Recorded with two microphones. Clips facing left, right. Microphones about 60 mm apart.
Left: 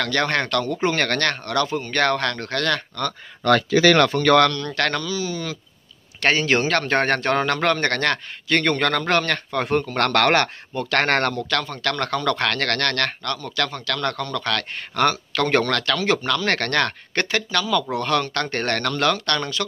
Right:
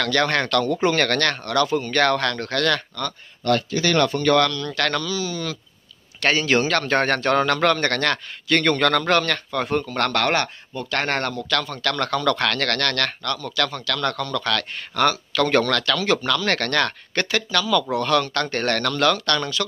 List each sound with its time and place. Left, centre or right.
0.0 s a man's voice: left
3.8 s speech: left
4.5 s speech: left
5.0 s a man's voice: left
11.4 s a man's voice: left